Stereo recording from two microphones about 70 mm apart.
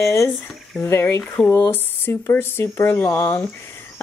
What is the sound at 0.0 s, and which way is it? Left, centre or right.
Speech, left.